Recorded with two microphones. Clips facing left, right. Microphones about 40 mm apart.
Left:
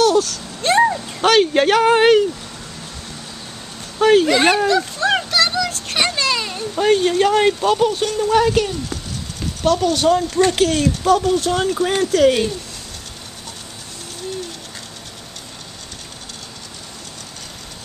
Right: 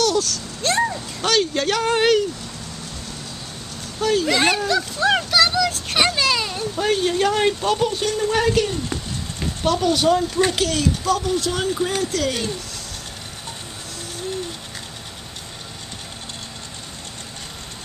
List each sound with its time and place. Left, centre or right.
0.2 s a sound: centre
1.2 s speech: left
4.0 s speech: left
4.3 s speech: centre
4.6 s a sound: centre
6.7 s speech: centre
8.3 s speech: centre
8.8 s a sound: right
9.9 s speech: centre
10.6 s speech: left
12.0 s speech: left